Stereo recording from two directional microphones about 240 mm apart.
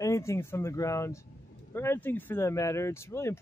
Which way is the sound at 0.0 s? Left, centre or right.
Centre.